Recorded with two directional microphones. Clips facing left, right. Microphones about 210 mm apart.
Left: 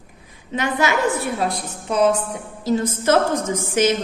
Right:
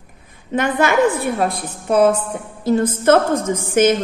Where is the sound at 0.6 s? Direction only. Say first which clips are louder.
Right 5 dB; 55° right (ahead or behind).